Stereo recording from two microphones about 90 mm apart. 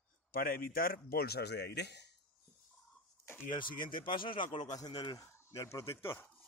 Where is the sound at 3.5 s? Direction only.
60° left (ahead or behind).